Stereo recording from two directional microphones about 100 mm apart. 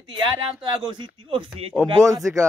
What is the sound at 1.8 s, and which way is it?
Speech, 30° right (ahead or behind).